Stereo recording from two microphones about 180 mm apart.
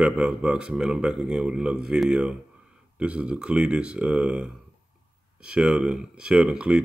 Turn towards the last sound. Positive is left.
turn(degrees=-5)  # may be behind; listen again after turning